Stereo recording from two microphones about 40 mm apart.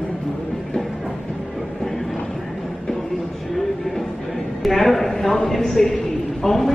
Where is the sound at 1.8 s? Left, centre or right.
Centre.